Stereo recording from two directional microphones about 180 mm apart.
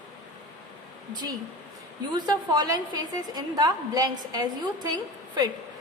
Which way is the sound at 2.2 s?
20° right (ahead or behind).